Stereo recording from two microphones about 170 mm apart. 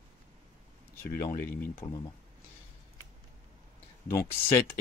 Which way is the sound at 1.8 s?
15° left (ahead or behind).